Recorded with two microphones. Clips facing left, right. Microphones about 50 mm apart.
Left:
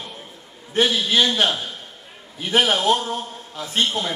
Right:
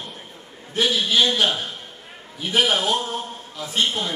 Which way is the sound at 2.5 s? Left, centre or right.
Left.